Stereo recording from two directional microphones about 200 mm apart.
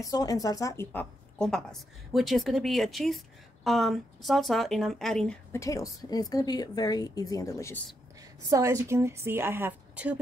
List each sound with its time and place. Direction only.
0.0 s speech: 20° left (ahead or behind)
5.6 s a woman's voice: 15° left (ahead or behind)
8.5 s a woman's voice: 15° right (ahead or behind)